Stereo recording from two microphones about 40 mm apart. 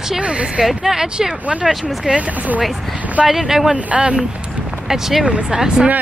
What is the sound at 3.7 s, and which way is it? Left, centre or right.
Speech, right.